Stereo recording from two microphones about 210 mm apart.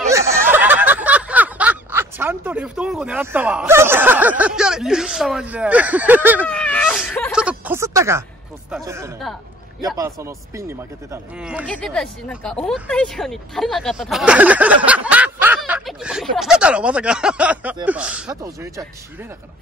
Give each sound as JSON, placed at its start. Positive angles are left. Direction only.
{"t": 0.1, "sound": "snicker", "side_deg": -15}
{"t": 6.4, "sound": "whimper", "side_deg": 5}
{"t": 7.3, "sound": "a sound", "side_deg": -5}
{"t": 8.8, "sound": "speech", "side_deg": -15}
{"t": 11.6, "sound": "speech", "side_deg": 5}
{"t": 18.3, "sound": "speech", "side_deg": -15}